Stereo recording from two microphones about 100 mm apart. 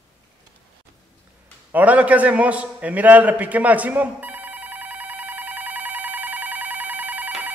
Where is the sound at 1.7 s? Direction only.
15° right (ahead or behind).